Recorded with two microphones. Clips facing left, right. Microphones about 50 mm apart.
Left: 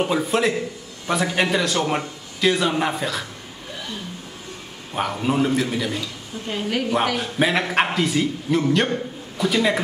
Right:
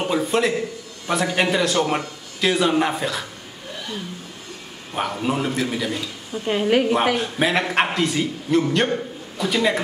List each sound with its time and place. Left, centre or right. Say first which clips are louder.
0.0 s a man's voice: even; centre
4.9 s a man's voice: left 1 dB; centre
6.4 s a woman's voice: right 6 dB; right
7.2 s a man's voice: even; centre